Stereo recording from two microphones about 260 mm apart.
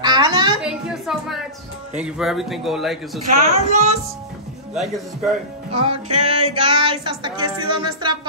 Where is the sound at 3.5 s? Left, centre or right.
Right.